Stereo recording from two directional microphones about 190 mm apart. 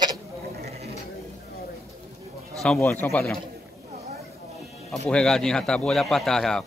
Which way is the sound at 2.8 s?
10° left (ahead or behind).